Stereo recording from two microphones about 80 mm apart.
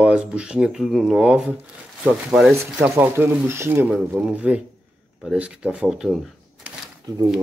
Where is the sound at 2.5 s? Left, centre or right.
Right.